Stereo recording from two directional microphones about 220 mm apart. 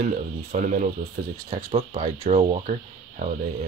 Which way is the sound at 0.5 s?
35° right (ahead or behind).